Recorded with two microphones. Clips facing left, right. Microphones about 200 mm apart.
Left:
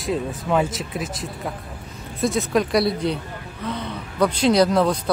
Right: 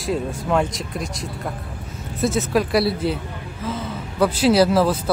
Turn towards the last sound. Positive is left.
turn(degrees=-5)  # may be behind; listen again after turning